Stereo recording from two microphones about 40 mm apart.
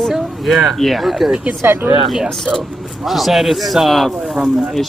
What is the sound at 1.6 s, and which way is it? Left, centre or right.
Speech, right.